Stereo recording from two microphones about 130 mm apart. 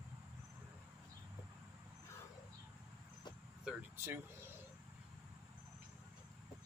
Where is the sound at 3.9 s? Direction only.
15° right (ahead or behind).